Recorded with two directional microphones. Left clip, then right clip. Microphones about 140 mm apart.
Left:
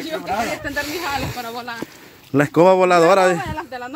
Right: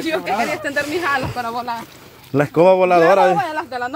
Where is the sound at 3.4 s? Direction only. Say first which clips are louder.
Right 6 dB; 90° right.